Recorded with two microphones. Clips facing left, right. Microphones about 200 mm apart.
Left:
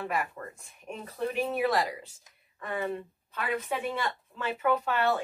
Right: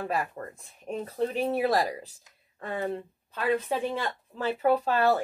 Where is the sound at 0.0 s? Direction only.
40° right (ahead or behind).